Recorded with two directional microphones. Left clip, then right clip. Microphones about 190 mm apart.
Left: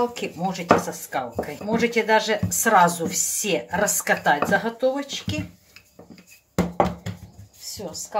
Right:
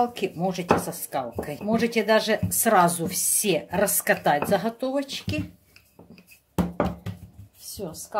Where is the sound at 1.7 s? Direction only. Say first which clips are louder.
Left 2 dB; 50° right (ahead or behind).